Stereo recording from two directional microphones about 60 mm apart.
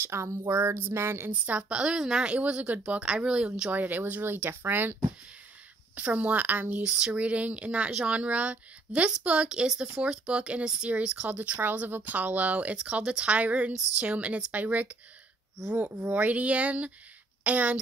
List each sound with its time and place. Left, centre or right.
0.0 s speech: right
1.3 s a woman's voice: right
3.7 s speech: right
5.9 s speech: right
6.9 s speech: centre
16.0 s a woman's voice: right